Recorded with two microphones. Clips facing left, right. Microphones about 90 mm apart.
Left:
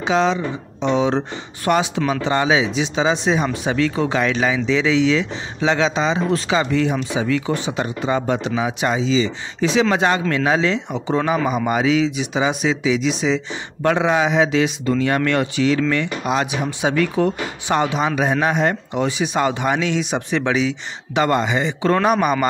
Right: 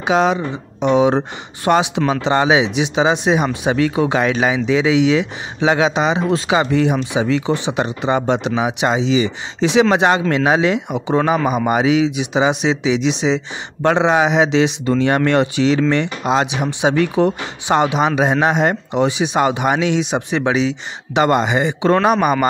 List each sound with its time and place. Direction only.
0.0 s speech: 15° right (ahead or behind)